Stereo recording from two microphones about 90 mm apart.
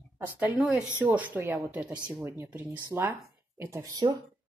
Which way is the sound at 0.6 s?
5° right (ahead or behind).